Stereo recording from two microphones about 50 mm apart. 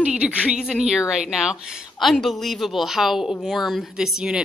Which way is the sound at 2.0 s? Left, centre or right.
Centre.